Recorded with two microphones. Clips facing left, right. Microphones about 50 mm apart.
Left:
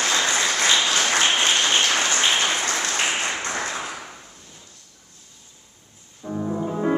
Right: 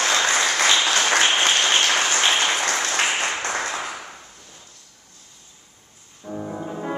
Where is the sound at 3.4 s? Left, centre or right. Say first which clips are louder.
Right 2 dB; right.